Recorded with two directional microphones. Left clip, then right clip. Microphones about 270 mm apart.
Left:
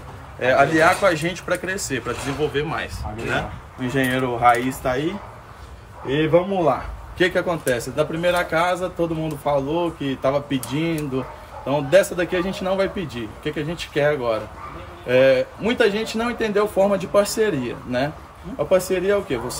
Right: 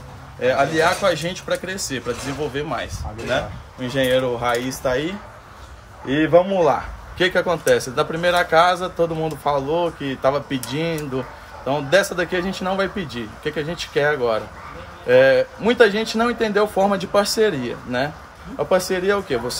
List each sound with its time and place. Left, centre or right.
0.4 s a man's voice: centre
2.5 s speech: right
3.8 s a man's voice: centre
6.0 s speech: right
7.2 s a man's voice: centre